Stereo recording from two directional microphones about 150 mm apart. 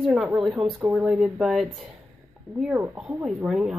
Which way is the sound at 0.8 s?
20° right (ahead or behind).